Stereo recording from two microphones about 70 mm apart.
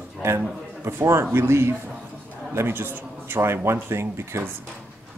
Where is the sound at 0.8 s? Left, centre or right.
Right.